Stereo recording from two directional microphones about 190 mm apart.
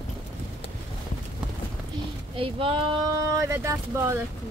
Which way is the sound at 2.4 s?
30° right (ahead or behind).